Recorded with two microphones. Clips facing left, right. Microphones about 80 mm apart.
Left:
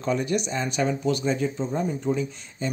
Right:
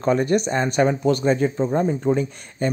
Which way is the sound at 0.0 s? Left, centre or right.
Right.